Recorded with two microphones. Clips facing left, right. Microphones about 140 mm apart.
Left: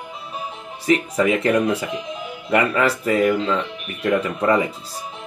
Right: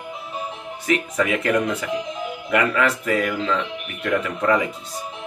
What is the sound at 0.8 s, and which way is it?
Speech, 30° left (ahead or behind).